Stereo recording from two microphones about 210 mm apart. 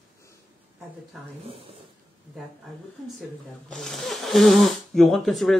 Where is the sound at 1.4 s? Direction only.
30° right (ahead or behind).